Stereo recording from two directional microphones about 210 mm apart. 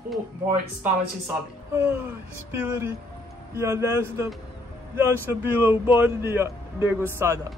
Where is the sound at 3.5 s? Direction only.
15° right (ahead or behind).